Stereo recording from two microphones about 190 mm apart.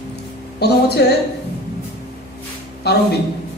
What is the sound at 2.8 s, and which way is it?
Speech, 60° left (ahead or behind).